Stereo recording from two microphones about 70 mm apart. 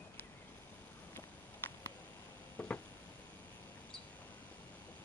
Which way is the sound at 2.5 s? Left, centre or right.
Left.